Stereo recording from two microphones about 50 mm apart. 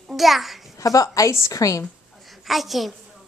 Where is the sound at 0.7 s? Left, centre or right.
Left.